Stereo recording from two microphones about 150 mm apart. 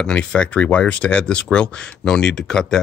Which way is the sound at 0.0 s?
5° left (ahead or behind).